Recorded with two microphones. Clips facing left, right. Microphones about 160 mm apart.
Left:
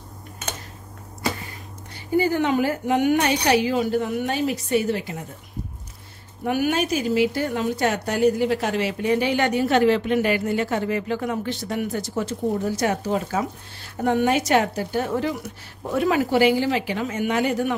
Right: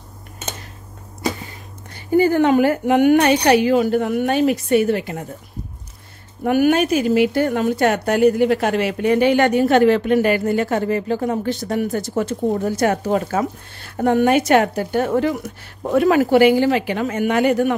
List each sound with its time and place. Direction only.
2.1 s a woman's voice: 55° right (ahead or behind)
6.4 s a woman's voice: 55° right (ahead or behind)